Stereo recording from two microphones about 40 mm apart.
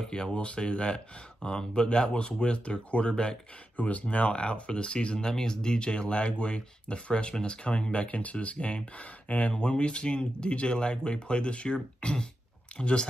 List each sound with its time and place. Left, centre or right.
0.0 s speech: centre
3.7 s speech: left